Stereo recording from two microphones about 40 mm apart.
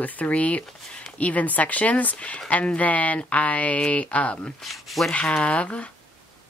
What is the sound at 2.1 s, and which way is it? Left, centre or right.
A woman's voice, left.